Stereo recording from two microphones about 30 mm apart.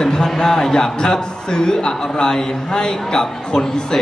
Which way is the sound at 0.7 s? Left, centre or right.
Left.